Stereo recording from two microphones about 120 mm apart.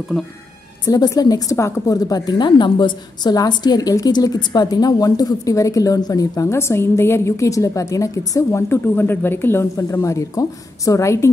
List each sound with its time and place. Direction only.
0.1 s a woman's voice: 5° left (ahead or behind)
0.8 s a woman's voice: 30° left (ahead or behind)